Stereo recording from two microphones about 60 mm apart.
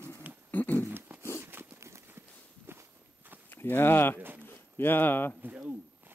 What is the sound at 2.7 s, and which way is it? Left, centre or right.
Walk, right.